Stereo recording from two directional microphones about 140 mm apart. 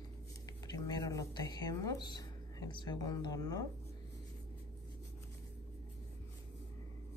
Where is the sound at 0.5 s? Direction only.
25° left (ahead or behind).